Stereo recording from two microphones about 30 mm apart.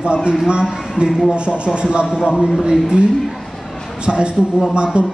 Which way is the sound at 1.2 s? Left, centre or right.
Right.